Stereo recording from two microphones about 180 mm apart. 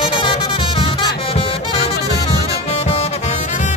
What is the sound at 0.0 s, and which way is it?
Music, 25° left (ahead or behind).